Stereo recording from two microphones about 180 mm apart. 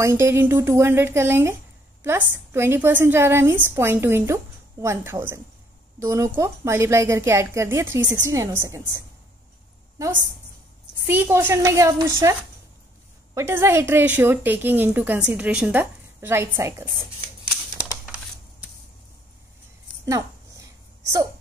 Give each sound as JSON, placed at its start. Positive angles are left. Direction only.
{"t": 0.0, "sound": "a woman's voice", "side_deg": -15}
{"t": 11.1, "sound": "a woman's voice", "side_deg": -10}
{"t": 13.3, "sound": "a woman's voice", "side_deg": -15}
{"t": 20.1, "sound": "a sound", "side_deg": -15}